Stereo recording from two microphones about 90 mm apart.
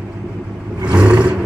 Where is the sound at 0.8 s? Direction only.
15° right (ahead or behind).